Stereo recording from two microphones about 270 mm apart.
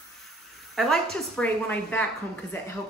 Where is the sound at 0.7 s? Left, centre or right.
Centre.